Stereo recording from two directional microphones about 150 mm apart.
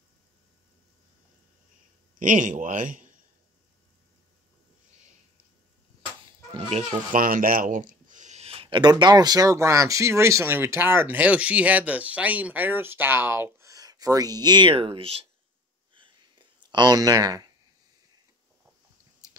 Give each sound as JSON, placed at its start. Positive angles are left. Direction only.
{"t": 2.1, "sound": "speech", "side_deg": -60}
{"t": 6.5, "sound": "speech", "side_deg": -45}
{"t": 7.2, "sound": "speech", "side_deg": -65}
{"t": 15.9, "sound": "a sound", "side_deg": -35}